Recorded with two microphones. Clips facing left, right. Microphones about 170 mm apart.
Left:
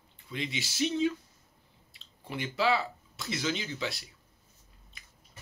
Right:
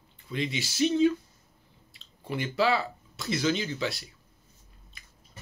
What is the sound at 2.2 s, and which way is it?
Speech, 15° left (ahead or behind).